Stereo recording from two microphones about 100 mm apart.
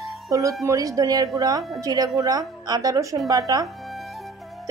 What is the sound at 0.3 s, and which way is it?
A woman's voice, 35° right (ahead or behind).